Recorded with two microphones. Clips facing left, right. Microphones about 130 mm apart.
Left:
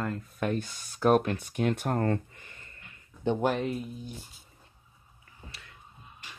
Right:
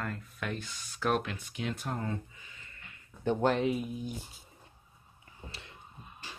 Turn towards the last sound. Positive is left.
turn(degrees=-30)  # may be behind; listen again after turning